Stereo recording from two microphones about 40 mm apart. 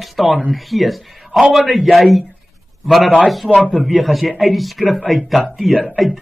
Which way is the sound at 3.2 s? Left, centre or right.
Centre.